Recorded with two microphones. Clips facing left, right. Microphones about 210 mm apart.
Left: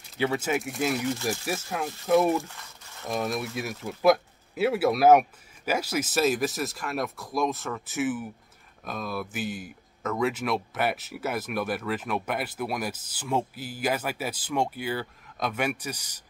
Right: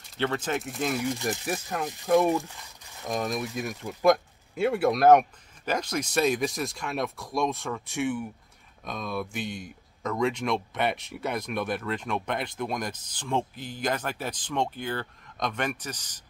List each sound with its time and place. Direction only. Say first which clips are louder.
0.2 s speech: left 2 dB; 10° left (ahead or behind)
2.4 s a sound: even; 15° right (ahead or behind)
3.2 s speech: left 1 dB; 5° left (ahead or behind)